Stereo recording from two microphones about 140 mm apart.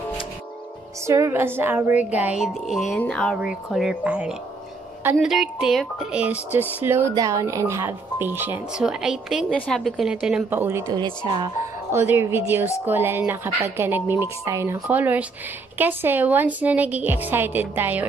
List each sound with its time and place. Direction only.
1.0 s a woman's voice: 20° right (ahead or behind)
8.7 s speech: 5° right (ahead or behind)
10.9 s speech: 35° right (ahead or behind)
11.9 s a woman's voice: 15° right (ahead or behind)